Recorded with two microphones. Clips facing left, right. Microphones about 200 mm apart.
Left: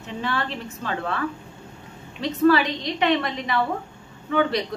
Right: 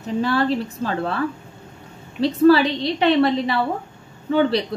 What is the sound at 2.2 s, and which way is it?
A woman's voice, 30° right (ahead or behind).